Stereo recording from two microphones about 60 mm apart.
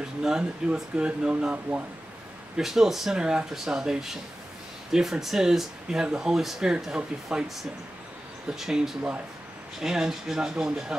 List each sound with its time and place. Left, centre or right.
0.2 s speech: centre
2.5 s speech: centre
8.5 s speech: centre